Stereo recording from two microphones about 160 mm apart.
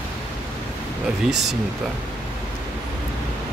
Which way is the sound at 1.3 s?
90° right.